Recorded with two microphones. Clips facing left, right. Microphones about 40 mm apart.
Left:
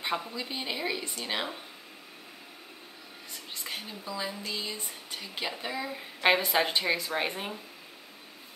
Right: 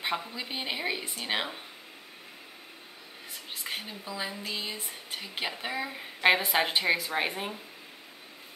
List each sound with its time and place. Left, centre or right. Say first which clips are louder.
0.0 s speech: even; centre
3.6 s speech: right 1 dB; centre